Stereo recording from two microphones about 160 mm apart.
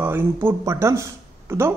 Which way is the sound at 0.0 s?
15° right (ahead or behind).